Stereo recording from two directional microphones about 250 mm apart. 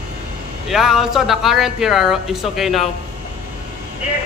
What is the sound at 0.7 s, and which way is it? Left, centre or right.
Speech, centre.